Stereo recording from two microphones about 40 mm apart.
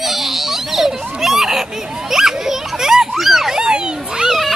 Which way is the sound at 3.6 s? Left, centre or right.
Right.